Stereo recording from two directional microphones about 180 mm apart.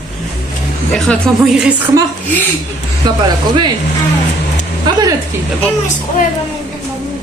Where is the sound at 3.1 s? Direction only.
25° right (ahead or behind).